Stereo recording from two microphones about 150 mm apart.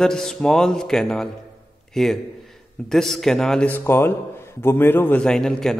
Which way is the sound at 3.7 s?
15° left (ahead or behind).